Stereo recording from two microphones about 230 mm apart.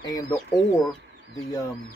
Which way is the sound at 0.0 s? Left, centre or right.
Centre.